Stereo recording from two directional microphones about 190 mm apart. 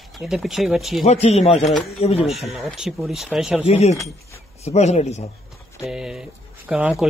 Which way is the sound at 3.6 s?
35° left (ahead or behind).